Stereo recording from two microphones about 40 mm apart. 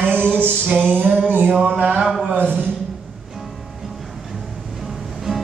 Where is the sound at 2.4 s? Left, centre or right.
Right.